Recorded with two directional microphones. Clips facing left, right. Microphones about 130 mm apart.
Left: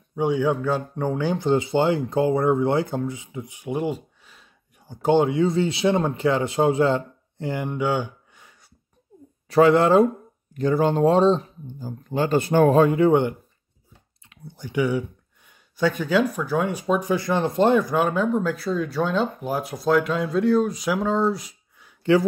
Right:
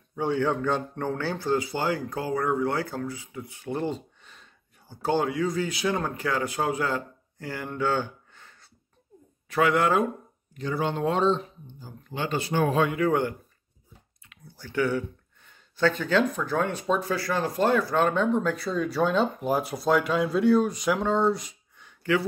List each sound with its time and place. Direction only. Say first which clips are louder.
0.1 s speech: left 4 dB; 15° left (ahead or behind)
4.7 s speech: left 7 dB; 15° left (ahead or behind)
9.5 s speech: left 7 dB; 30° left (ahead or behind)
10.5 s speech: left 8 dB; 45° left (ahead or behind); by 17.9 s 20° left (ahead or behind)
17.9 s speech: left 2 dB; 10° left (ahead or behind)